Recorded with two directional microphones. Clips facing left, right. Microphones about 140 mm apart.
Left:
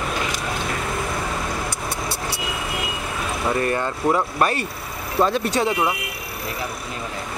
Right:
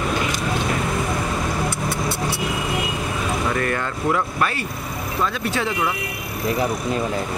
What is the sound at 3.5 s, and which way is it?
Speech, 25° left (ahead or behind).